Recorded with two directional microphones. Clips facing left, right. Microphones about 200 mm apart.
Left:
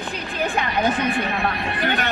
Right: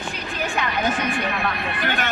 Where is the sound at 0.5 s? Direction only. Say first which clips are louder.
Left 2 dB; 35° left (ahead or behind).